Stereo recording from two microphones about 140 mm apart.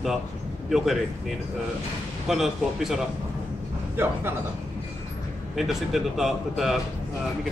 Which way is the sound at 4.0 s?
15° right (ahead or behind).